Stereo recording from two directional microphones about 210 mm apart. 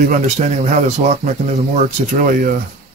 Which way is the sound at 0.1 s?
35° right (ahead or behind).